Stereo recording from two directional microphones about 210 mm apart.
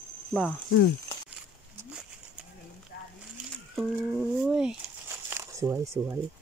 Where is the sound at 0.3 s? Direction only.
Centre (ahead or behind).